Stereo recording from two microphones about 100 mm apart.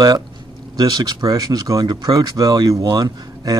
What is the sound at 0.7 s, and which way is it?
Speech, 45° right (ahead or behind).